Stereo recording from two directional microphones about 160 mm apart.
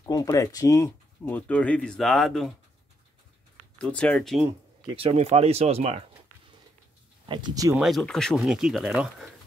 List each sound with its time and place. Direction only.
0.0 s speech: 20° left (ahead or behind); by 2.5 s centre (ahead or behind)
3.7 s speech: 5° left (ahead or behind)
4.9 s speech: 40° right (ahead or behind)
7.2 s speech: 25° right (ahead or behind)
7.7 s speech: centre (ahead or behind)